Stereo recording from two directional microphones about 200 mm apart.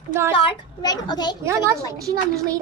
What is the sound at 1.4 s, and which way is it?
A child's voice, 15° right (ahead or behind).